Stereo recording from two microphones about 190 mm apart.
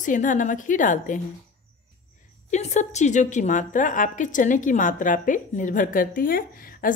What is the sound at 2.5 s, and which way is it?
A woman's voice, 35° left (ahead or behind).